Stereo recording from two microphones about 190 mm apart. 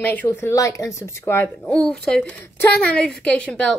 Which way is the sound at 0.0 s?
10° left (ahead or behind).